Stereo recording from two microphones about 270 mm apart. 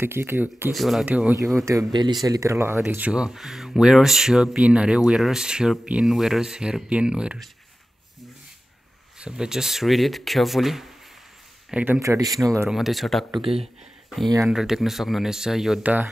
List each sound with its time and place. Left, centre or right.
0.0 s speech: centre
9.2 s speech: centre
12.6 s speech: centre
13.3 s speech: right
14.3 s speech: centre